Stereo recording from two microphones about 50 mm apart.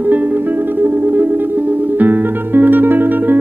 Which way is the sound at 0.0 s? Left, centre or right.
Right.